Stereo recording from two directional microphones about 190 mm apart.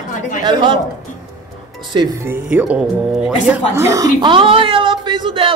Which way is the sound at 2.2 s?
10° right (ahead or behind).